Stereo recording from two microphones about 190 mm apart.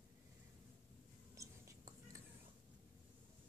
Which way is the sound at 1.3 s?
15° right (ahead or behind).